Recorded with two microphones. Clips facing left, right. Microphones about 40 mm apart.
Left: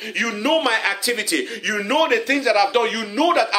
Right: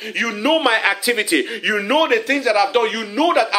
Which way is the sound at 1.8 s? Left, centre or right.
Centre.